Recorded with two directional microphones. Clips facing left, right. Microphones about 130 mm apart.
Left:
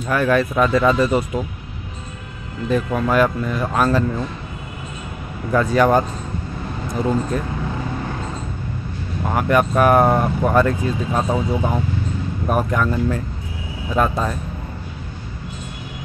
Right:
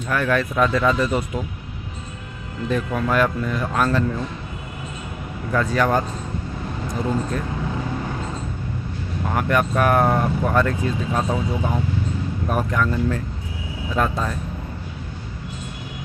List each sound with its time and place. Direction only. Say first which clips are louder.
0.1 s speech: left 4 dB; 10° left (ahead or behind)
2.7 s speech: left 3 dB; 5° left (ahead or behind)
5.5 s speech: left 4 dB; 15° left (ahead or behind)
9.3 s speech: left 4 dB; 10° left (ahead or behind)
11.1 s speech: left 4 dB; 20° left (ahead or behind)